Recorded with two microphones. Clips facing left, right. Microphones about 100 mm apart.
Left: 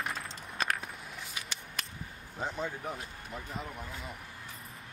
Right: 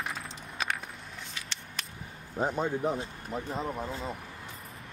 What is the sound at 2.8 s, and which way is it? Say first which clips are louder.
Speech: right 8 dB; 30° right (ahead or behind).